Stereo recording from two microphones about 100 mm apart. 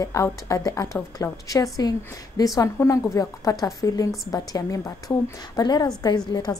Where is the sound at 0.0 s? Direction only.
30° left (ahead or behind).